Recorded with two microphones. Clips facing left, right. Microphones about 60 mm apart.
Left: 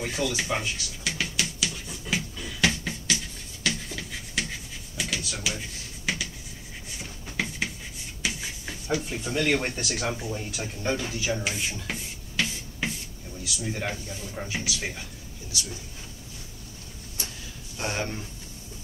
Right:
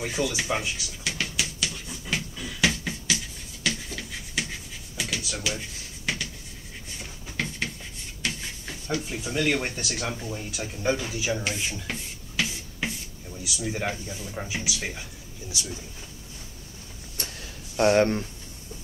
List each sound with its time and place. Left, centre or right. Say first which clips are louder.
0.0 s a sound: right 1 dB; centre
13.6 s speech: right 2 dB; centre
17.7 s speech: right 11 dB; right